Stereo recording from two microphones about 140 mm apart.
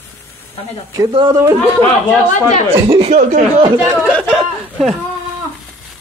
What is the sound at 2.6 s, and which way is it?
Speech, 40° right (ahead or behind).